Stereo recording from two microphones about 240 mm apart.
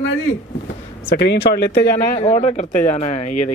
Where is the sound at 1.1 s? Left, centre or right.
Left.